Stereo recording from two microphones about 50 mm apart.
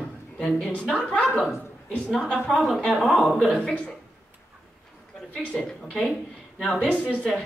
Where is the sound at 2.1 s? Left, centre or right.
Centre.